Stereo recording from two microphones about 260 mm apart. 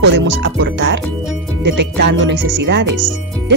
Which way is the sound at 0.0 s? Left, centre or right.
Right.